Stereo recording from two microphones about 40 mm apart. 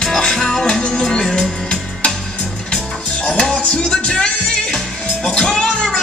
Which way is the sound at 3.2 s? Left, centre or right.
Centre.